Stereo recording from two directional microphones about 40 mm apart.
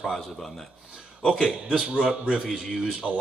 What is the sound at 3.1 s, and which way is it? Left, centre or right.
Speech, left.